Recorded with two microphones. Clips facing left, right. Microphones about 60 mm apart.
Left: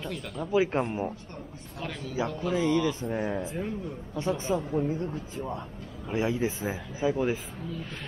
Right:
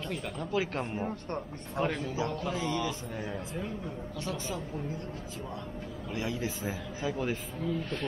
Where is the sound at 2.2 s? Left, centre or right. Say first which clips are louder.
Left 8 dB; left.